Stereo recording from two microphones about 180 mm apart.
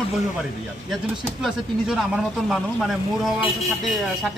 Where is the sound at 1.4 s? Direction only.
5° right (ahead or behind).